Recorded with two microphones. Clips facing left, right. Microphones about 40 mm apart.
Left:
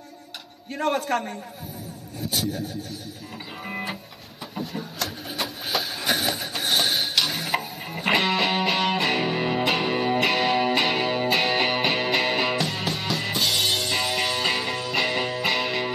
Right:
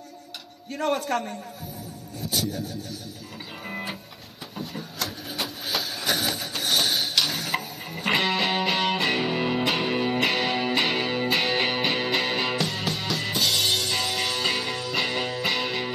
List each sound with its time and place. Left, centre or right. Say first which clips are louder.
0.7 s a man's voice: left 1 dB; centre
1.0 s a man's voice: left 1 dB; left
4.6 s printer: left 2 dB; centre
6.4 s music: left 1 dB; centre